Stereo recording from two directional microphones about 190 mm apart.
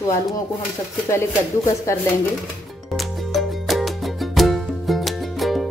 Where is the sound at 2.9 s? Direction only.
Centre (ahead or behind).